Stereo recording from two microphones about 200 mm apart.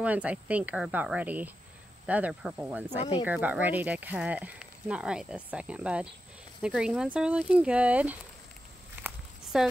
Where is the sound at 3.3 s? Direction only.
10° right (ahead or behind).